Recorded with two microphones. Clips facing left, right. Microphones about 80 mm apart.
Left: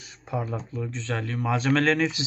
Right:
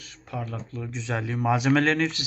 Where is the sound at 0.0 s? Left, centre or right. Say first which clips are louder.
Left 4 dB; centre.